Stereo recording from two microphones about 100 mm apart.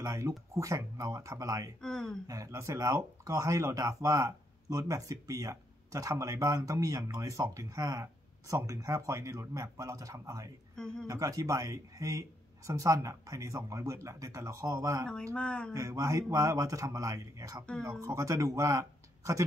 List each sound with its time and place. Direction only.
0.0 s speech: 30° right (ahead or behind)
1.8 s speech: 5° left (ahead or behind)
2.2 s speech: 35° right (ahead or behind)
15.3 s speech: 10° left (ahead or behind)
15.7 s speech: 35° right (ahead or behind)